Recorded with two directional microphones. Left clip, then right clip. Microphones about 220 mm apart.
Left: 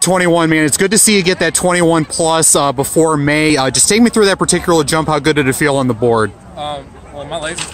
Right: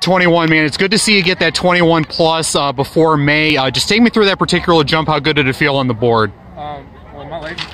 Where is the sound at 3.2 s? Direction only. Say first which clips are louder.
Even; 45° left (ahead or behind).